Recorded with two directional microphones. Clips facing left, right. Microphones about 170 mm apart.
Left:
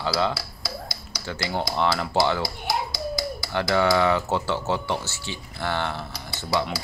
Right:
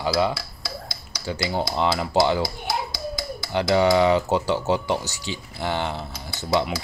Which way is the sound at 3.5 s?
15° right (ahead or behind).